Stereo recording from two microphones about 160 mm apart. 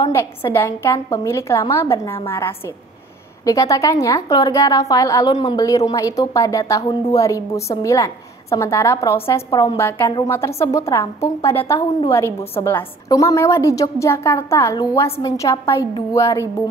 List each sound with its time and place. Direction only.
0.0 s a woman's voice: 15° left (ahead or behind)
9.5 s a woman's voice: 25° left (ahead or behind)
9.8 s a woman's voice: 15° left (ahead or behind)